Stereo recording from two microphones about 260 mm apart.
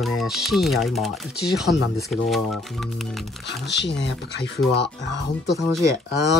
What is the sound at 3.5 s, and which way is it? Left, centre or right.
Speech, left.